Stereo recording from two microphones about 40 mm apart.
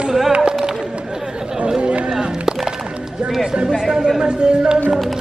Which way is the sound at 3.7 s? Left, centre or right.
Centre.